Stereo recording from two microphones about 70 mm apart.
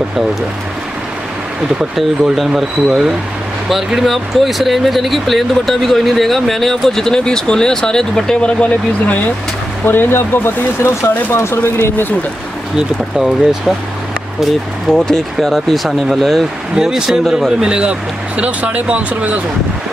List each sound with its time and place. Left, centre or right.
2.3 s speech: centre
9.8 s speech: left
13.2 s speech: centre
14.4 s speech: centre